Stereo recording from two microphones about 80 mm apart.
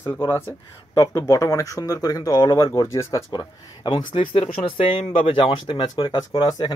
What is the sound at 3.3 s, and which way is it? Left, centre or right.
Speech, left.